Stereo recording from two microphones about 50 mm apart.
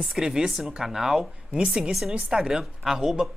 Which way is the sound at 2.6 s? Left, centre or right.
Centre.